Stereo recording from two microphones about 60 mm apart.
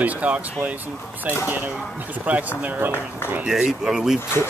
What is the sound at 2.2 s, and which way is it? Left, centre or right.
Speech, right.